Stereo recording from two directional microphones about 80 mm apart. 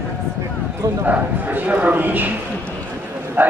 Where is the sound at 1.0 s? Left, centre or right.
Right.